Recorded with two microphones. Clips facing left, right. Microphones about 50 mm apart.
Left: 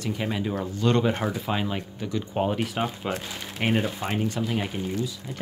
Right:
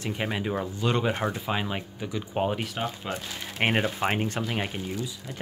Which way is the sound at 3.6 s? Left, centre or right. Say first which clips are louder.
Even; right.